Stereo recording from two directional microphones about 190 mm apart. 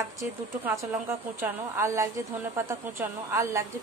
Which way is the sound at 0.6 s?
15° right (ahead or behind).